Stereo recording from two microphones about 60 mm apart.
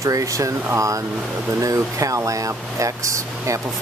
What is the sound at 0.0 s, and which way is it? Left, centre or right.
Speech, right.